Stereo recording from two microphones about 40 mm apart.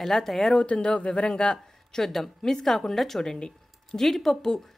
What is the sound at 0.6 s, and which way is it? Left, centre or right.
Speech, left.